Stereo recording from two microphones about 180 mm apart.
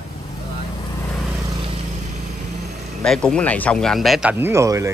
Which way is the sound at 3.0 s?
5° left (ahead or behind).